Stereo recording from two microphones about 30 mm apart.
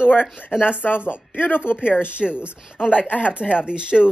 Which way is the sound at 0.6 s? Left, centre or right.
Left.